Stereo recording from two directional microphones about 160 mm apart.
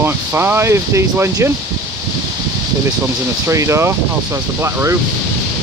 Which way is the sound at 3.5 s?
20° right (ahead or behind).